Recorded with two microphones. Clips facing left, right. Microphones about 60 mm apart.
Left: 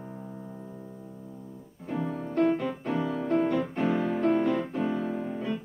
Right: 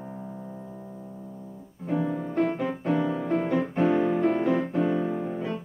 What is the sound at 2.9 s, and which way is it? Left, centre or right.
Music, centre.